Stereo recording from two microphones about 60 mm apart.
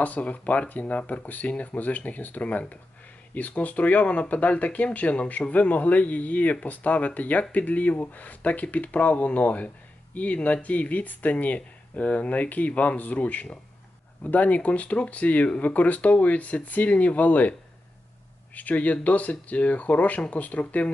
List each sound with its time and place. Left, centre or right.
0.0 s speech: left